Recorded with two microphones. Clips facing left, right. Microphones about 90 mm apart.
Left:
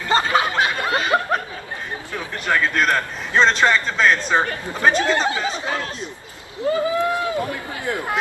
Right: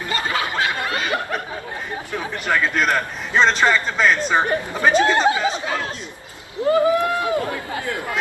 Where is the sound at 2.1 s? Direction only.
15° right (ahead or behind).